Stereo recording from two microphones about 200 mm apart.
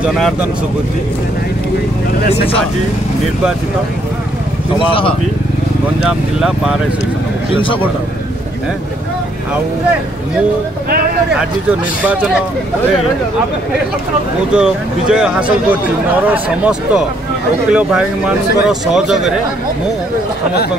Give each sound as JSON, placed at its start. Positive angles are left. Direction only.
{"t": 0.0, "sound": "speech", "side_deg": 0}
{"t": 6.0, "sound": "speech", "side_deg": -5}
{"t": 11.3, "sound": "speech", "side_deg": -5}
{"t": 14.5, "sound": "speech", "side_deg": -5}